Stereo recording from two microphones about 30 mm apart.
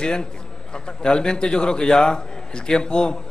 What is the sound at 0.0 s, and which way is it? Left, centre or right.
A man's voice, left.